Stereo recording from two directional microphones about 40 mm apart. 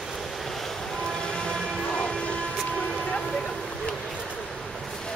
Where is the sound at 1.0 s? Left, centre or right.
Centre.